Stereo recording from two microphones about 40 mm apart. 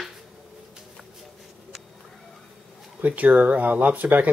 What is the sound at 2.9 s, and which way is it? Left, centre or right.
Speech, right.